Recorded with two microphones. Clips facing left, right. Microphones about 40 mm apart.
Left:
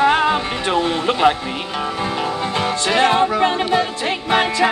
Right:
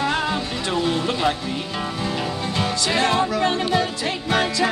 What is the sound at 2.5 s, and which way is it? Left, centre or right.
Music, left.